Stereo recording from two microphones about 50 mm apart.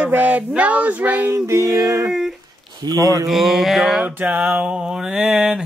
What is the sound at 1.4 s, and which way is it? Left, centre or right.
Music, right.